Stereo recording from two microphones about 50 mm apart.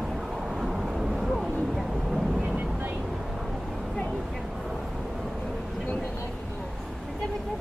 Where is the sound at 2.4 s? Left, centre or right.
Right.